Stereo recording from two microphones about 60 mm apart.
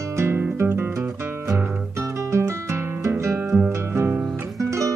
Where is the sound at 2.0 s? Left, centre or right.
Right.